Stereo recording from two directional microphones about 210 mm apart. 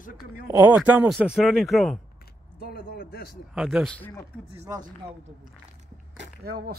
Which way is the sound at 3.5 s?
5° right (ahead or behind).